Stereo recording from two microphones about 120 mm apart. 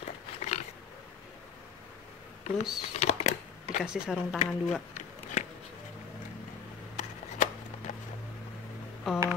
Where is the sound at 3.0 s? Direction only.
65° left (ahead or behind).